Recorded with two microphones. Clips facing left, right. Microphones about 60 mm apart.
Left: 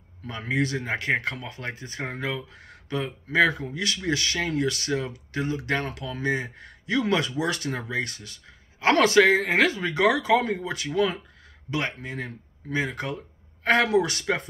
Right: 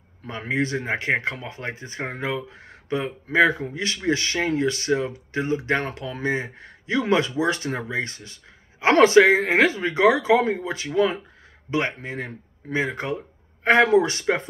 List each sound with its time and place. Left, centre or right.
0.2 s speech: right